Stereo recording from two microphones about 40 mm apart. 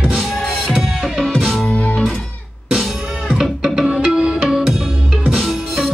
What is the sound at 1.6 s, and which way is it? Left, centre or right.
Music, left.